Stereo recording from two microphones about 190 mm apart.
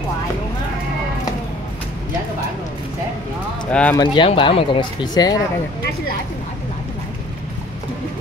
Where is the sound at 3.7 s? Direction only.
5° left (ahead or behind).